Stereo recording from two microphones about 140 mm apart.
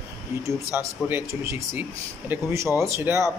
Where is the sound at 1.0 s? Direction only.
15° right (ahead or behind).